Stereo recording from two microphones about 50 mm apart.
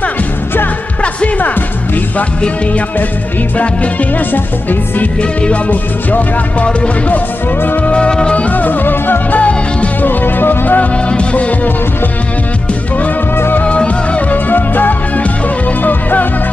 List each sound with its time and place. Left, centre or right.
1.0 s music: left
4.3 s music: left
7.9 s music: centre
8.5 s music: left
9.4 s music: left
10.0 s music: left
11.1 s music: left
13.6 s music: left
14.3 s music: left